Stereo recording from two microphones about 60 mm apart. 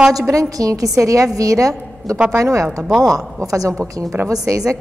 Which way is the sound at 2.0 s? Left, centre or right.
Centre.